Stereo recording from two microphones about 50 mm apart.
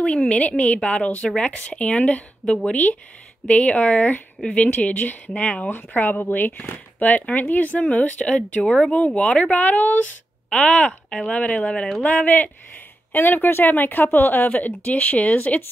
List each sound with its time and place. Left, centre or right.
0.0 s speech: left
5.7 s speech: left
8.6 s speech: centre
8.9 s speech: left
11.1 s speech: centre
11.3 s speech: left